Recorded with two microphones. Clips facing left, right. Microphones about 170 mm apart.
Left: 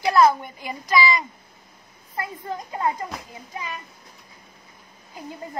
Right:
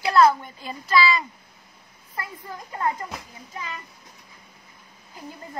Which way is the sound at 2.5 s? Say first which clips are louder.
Left 7 dB; 25° left (ahead or behind).